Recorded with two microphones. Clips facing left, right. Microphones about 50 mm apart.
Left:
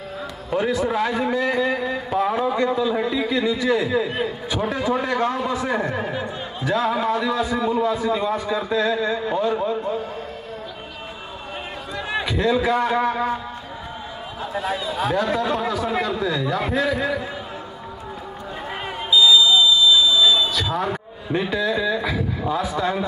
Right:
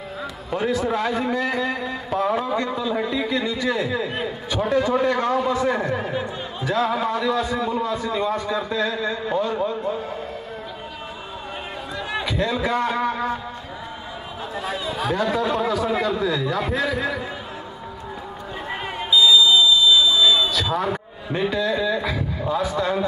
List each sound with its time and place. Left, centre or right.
0.5 s a man's voice: centre
12.2 s speech: centre
14.5 s speech: centre
19.4 s a sound: right
20.2 s a man's voice: centre